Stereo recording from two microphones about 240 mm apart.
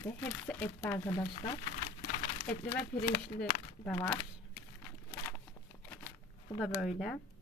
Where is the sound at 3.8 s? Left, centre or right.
Centre.